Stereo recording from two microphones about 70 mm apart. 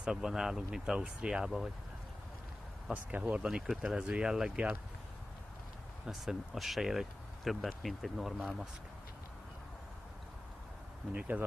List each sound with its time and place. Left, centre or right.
0.0 s speech: centre
2.9 s speech: right
3.6 s speech: centre
6.0 s speech: centre
11.1 s speech: right